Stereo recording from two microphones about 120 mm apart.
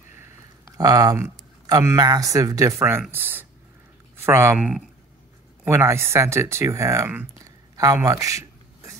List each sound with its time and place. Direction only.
0.7 s speech: 30° right (ahead or behind)
4.6 s speech: 10° right (ahead or behind)
5.7 s speech: 20° right (ahead or behind)
7.4 s a sound: 30° right (ahead or behind)